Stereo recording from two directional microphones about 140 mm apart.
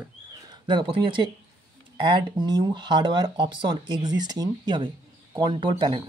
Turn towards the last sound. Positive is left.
turn(degrees=-35)  # may be behind; listen again after turning